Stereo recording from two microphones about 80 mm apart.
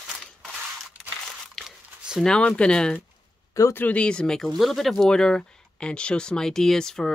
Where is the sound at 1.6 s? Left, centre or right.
Centre.